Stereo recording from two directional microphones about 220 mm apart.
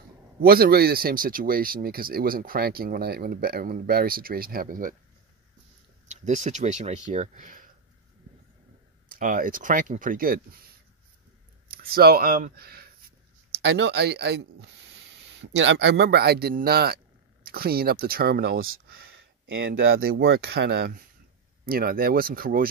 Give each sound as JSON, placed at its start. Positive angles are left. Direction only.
{"t": 0.4, "sound": "speech", "side_deg": -45}
{"t": 6.0, "sound": "speech", "side_deg": -35}
{"t": 9.1, "sound": "speech", "side_deg": -40}
{"t": 11.6, "sound": "speech", "side_deg": -45}
{"t": 19.5, "sound": "speech", "side_deg": -60}
{"t": 20.0, "sound": "speech", "side_deg": -45}